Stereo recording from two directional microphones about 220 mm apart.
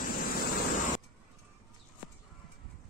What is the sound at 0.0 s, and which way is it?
Vehicle, 40° left (ahead or behind).